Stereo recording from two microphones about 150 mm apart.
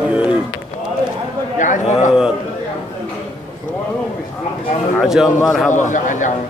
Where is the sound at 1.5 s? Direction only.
55° left (ahead or behind).